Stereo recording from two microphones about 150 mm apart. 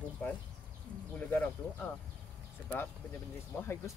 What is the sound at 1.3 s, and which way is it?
Speech, 10° left (ahead or behind).